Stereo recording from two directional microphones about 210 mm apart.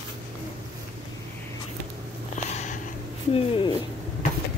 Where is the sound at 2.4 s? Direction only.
35° left (ahead or behind).